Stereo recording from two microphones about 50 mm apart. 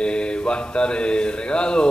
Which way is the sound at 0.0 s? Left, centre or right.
Centre.